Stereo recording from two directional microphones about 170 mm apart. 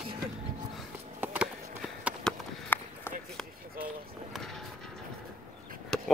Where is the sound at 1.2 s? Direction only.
5° right (ahead or behind).